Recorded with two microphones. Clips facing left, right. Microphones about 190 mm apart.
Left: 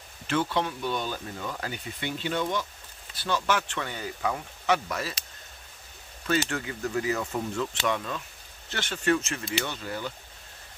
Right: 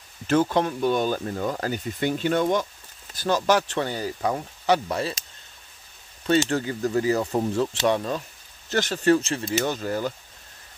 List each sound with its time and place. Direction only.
0.3 s speech: 45° right (ahead or behind)
6.2 s speech: 30° right (ahead or behind)